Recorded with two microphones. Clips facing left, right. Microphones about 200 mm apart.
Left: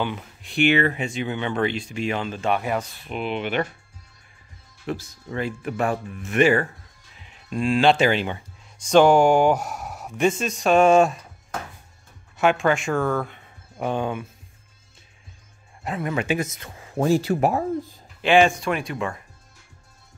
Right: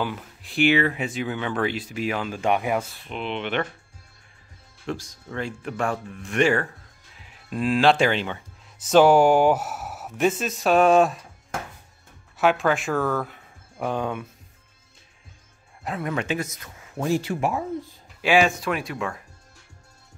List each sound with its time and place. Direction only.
0.0 s speech: centre (ahead or behind)
3.1 s speech: 5° left (ahead or behind)
4.8 s speech: 5° left (ahead or behind)
8.7 s speech: 5° right (ahead or behind)
12.4 s speech: centre (ahead or behind)
15.8 s speech: centre (ahead or behind)
16.3 s speech: 25° left (ahead or behind)
18.2 s speech: 5° right (ahead or behind)